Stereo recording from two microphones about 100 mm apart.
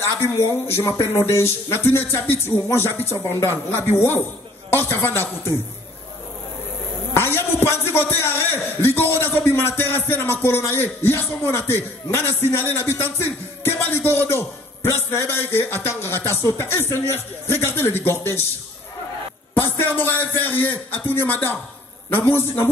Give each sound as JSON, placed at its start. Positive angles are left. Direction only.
{"t": 0.2, "sound": "a man's voice", "side_deg": 25}
{"t": 7.2, "sound": "a man's voice", "side_deg": 25}
{"t": 19.5, "sound": "a man's voice", "side_deg": 20}